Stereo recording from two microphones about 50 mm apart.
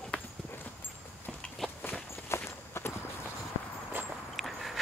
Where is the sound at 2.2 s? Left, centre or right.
Left.